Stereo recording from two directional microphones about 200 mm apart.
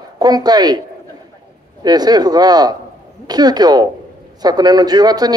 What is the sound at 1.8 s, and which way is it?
Speech, 20° right (ahead or behind).